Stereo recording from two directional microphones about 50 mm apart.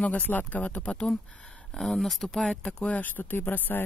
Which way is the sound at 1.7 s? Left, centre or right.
Centre.